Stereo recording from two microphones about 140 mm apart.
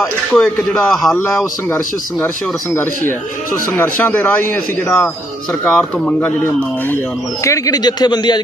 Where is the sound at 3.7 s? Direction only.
15° left (ahead or behind).